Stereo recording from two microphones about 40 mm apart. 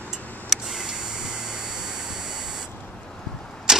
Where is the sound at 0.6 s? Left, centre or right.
Centre.